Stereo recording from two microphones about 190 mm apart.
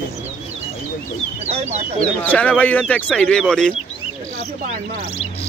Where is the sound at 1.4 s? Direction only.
35° right (ahead or behind).